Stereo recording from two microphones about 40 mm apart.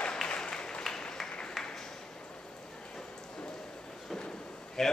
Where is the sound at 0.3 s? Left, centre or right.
Centre.